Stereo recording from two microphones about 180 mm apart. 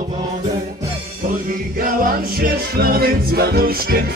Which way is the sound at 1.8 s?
55° right (ahead or behind).